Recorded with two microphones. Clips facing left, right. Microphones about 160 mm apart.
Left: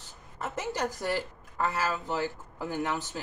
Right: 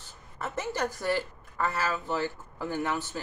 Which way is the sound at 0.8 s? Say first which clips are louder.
Right 3 dB; 40° left (ahead or behind).